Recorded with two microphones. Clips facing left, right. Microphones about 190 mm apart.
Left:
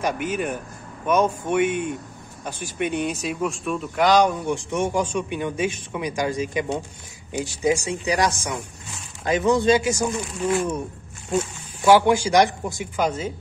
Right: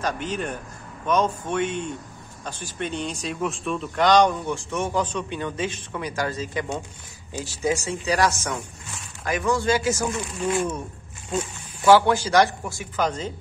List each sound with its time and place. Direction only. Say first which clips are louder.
0.0 s speech: left 3 dB; 10° left (ahead or behind)
10.5 s speech: left 3 dB; 5° left (ahead or behind)